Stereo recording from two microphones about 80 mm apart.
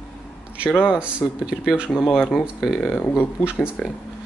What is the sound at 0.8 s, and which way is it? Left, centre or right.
Speech, centre.